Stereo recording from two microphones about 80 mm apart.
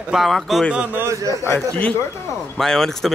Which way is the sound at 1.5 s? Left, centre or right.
Centre.